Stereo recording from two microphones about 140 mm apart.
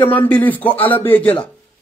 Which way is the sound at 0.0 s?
15° left (ahead or behind).